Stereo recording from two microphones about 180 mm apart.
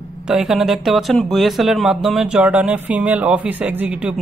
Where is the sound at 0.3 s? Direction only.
Centre (ahead or behind).